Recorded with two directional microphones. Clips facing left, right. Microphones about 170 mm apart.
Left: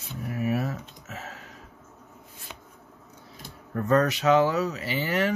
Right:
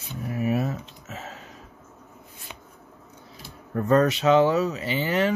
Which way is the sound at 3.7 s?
25° right (ahead or behind).